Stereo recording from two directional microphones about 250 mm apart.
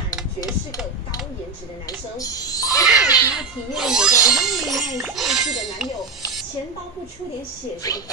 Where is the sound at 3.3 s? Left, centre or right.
Centre.